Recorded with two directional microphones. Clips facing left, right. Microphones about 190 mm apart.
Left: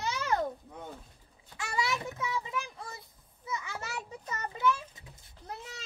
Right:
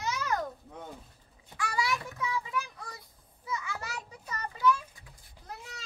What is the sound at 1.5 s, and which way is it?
Child singing, 25° left (ahead or behind).